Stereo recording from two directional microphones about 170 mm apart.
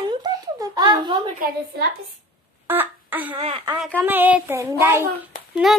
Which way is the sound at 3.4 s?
35° right (ahead or behind).